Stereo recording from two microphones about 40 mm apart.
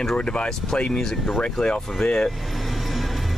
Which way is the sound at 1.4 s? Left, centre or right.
Left.